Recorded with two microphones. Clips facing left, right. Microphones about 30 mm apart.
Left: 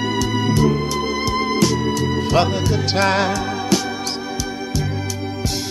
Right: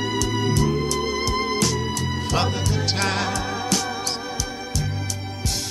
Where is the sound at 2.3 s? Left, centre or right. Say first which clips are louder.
Left 5 dB; centre.